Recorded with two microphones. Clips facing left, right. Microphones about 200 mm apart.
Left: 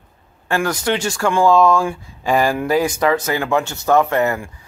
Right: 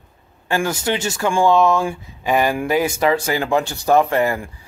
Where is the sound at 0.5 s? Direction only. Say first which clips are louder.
Left 1 dB; 25° right (ahead or behind).